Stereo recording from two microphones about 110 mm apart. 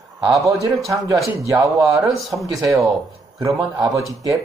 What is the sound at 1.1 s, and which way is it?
Speech, 30° right (ahead or behind).